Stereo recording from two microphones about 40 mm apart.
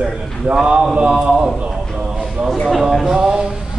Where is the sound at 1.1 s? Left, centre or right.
Centre.